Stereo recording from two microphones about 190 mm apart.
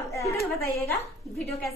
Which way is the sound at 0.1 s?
15° left (ahead or behind).